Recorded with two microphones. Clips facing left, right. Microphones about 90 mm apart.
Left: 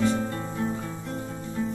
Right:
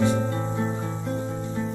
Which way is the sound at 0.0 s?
20° right (ahead or behind).